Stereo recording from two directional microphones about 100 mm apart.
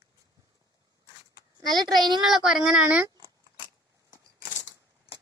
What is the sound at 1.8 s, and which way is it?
Speech, 45° right (ahead or behind).